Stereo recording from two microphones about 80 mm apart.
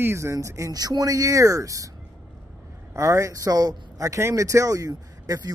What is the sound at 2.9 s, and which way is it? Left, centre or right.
Speech, right.